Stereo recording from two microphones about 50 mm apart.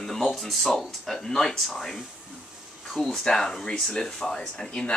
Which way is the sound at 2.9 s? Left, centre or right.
Centre.